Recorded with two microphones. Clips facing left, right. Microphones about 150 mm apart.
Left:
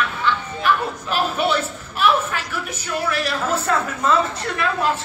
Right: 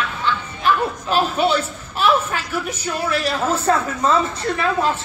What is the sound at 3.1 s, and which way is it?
Speech, 30° right (ahead or behind).